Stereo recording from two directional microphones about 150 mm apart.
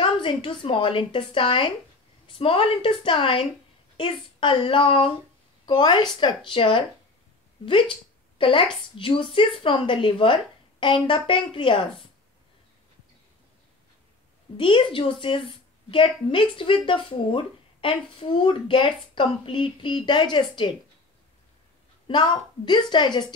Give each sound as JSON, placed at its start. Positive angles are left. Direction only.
{"t": 0.0, "sound": "a woman's voice", "side_deg": 35}
{"t": 14.6, "sound": "a woman's voice", "side_deg": 35}
{"t": 22.0, "sound": "a woman's voice", "side_deg": 30}